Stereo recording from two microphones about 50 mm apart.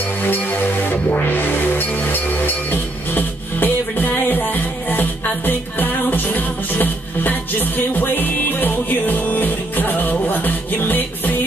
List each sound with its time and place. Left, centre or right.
0.2 s music: left